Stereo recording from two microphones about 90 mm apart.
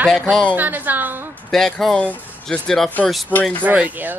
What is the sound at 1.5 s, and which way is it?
Speech, 5° left (ahead or behind).